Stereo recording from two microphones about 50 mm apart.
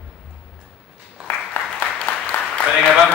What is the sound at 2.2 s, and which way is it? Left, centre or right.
Applause, left.